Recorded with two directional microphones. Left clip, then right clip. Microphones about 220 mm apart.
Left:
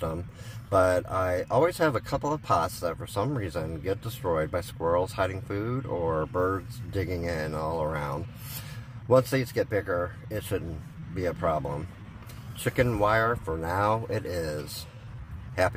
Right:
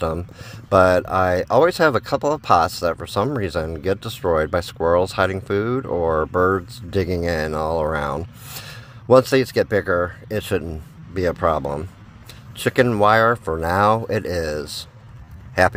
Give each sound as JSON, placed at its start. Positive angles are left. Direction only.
{"t": 0.7, "sound": "speech", "side_deg": -45}